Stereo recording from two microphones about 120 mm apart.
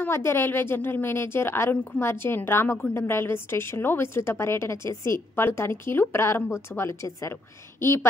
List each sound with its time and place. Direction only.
0.0 s a woman's voice: 20° left (ahead or behind)